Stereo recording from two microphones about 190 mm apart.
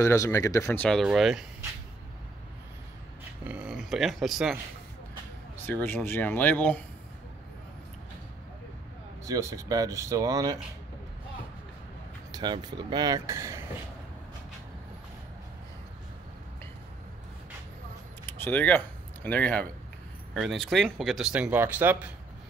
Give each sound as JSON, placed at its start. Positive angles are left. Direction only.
{"t": 0.0, "sound": "speech", "side_deg": 15}
{"t": 0.8, "sound": "speech", "side_deg": 0}
{"t": 3.4, "sound": "speech", "side_deg": -5}
{"t": 5.7, "sound": "speech", "side_deg": 10}
{"t": 9.2, "sound": "speech", "side_deg": -15}
{"t": 12.3, "sound": "speech", "side_deg": -20}
{"t": 18.2, "sound": "speech", "side_deg": 10}